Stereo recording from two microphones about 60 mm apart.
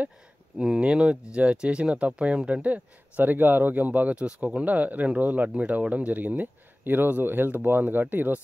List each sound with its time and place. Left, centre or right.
0.6 s speech: centre; by 8.4 s right